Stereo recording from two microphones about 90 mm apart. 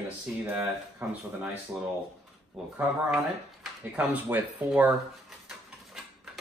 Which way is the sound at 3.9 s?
15° right (ahead or behind).